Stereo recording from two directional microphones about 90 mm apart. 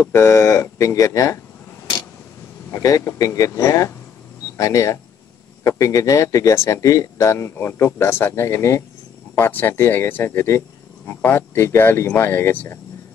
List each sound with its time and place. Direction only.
0.0 s speech: 30° left (ahead or behind)
2.7 s speech: 35° left (ahead or behind)